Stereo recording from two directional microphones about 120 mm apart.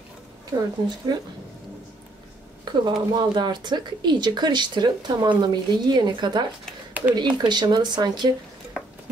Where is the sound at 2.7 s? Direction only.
40° right (ahead or behind).